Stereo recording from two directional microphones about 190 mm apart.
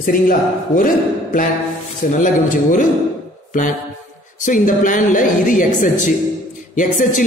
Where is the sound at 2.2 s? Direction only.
45° left (ahead or behind).